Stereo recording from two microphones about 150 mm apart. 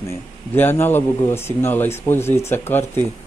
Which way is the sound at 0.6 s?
15° left (ahead or behind).